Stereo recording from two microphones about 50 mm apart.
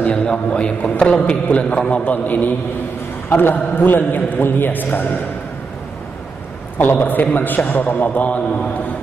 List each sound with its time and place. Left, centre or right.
0.0 s a man's voice: left
6.8 s a man's voice: left